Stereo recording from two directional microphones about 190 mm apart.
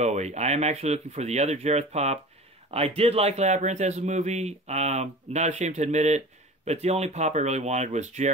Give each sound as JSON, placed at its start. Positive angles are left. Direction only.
{"t": 0.0, "sound": "a man's voice", "side_deg": -35}